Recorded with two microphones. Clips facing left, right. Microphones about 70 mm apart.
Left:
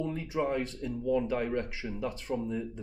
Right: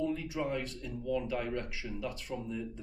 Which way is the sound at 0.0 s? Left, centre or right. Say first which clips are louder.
Left 2 dB; left.